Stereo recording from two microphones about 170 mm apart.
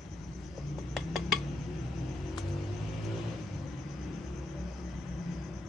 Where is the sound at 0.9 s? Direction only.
Centre (ahead or behind).